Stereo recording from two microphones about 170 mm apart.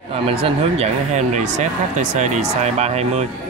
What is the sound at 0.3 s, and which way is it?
Speech, 35° right (ahead or behind).